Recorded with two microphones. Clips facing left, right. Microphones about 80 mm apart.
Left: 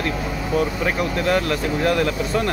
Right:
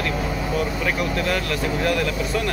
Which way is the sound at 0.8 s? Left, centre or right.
Left.